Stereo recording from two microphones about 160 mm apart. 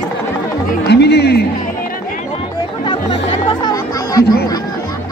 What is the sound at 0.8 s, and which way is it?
Run, 90° left.